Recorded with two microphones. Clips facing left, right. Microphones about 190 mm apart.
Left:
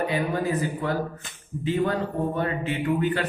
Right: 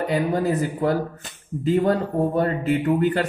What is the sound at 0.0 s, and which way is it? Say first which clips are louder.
Speech: right 4 dB; 40° right (ahead or behind).